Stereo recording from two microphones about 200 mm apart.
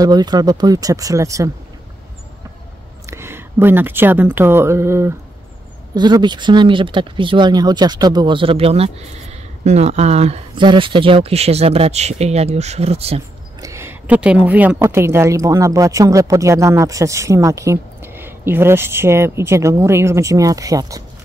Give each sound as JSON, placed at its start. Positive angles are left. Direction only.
{"t": 0.0, "sound": "a woman's voice", "side_deg": -20}
{"t": 3.1, "sound": "a woman's voice", "side_deg": -10}
{"t": 13.6, "sound": "a woman's voice", "side_deg": -15}